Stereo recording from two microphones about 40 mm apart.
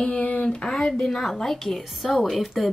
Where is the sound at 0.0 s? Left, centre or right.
Left.